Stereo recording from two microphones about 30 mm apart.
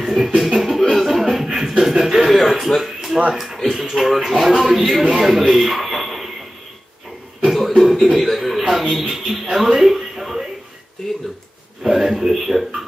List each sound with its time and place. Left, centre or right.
0.0 s music: centre
0.9 s chuckle: centre
1.3 s chuckle: centre
2.1 s a sound: centre
3.7 s speech: centre
7.4 s speech: centre
9.7 s a sound: centre
11.0 s speech: centre
11.8 s speech: centre